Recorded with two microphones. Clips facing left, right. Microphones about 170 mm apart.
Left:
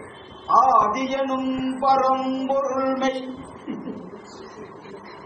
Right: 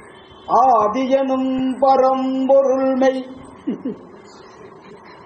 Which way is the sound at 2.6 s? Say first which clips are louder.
Right 8 dB; 50° right (ahead or behind).